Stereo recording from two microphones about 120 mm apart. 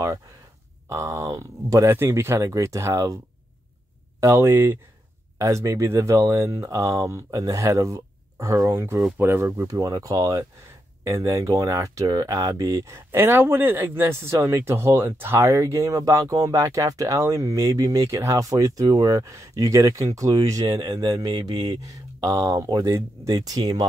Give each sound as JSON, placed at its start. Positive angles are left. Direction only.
{"t": 0.8, "sound": "speech", "side_deg": -25}
{"t": 4.2, "sound": "speech", "side_deg": -25}